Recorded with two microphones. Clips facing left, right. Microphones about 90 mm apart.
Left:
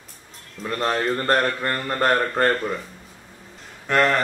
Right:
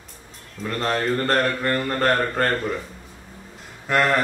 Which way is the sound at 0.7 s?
10° left (ahead or behind).